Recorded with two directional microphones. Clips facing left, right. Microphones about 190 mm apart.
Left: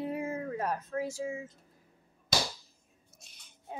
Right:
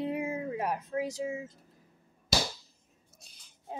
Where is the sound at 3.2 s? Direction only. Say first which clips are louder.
Right 2 dB; 30° right (ahead or behind).